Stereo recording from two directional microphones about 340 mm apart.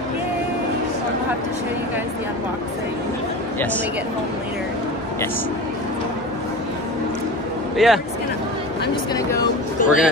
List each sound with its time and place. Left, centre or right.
7.7 s speech: centre
8.8 s speech: centre
9.8 s a man's voice: left